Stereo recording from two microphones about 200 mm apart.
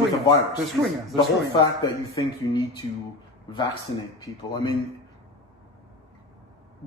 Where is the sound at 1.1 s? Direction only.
20° left (ahead or behind).